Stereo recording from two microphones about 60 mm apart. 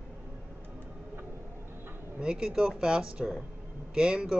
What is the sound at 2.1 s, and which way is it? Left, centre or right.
Speech, centre.